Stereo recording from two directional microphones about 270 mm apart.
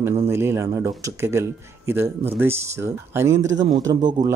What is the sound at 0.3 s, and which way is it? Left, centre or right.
Speech, centre.